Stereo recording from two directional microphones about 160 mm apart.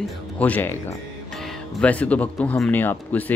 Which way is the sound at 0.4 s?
10° left (ahead or behind).